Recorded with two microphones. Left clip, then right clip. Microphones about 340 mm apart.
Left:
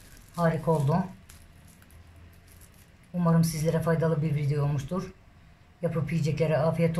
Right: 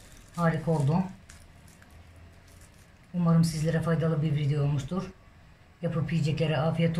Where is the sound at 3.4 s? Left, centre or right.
Centre.